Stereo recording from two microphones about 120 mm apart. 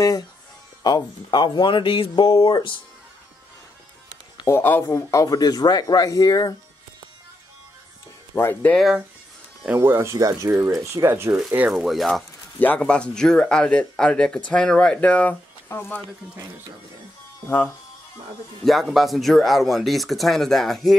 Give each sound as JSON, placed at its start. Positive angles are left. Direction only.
{"t": 0.8, "sound": "speech", "side_deg": 35}
{"t": 4.5, "sound": "speech", "side_deg": 20}
{"t": 8.4, "sound": "speech", "side_deg": 20}
{"t": 9.8, "sound": "speech", "side_deg": -20}
{"t": 11.3, "sound": "speech", "side_deg": -10}
{"t": 12.5, "sound": "speech", "side_deg": 10}
{"t": 17.5, "sound": "speech", "side_deg": 20}
{"t": 18.6, "sound": "speech", "side_deg": 0}